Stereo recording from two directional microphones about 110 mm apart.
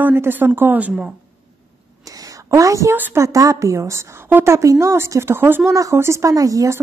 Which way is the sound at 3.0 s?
20° right (ahead or behind).